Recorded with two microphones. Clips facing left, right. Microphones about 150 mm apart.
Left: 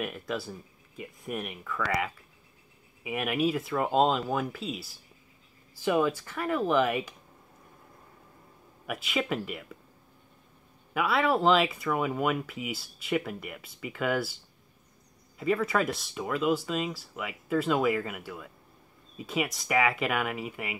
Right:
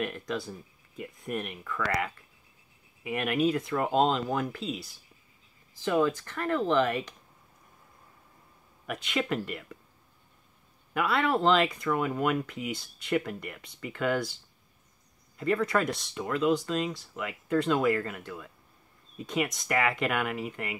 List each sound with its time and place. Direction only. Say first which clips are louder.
0.0 s speech: right 1 dB; 5° left (ahead or behind)
8.8 s speech: even; 5° left (ahead or behind)
10.9 s speech: left 1 dB; centre (ahead or behind)
15.3 s speech: even; 5° left (ahead or behind)